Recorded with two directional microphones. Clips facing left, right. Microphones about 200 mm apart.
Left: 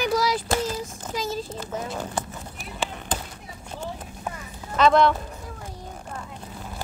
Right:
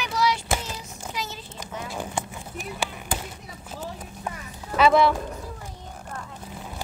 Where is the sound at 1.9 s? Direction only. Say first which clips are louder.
Left 1 dB; 10° right (ahead or behind).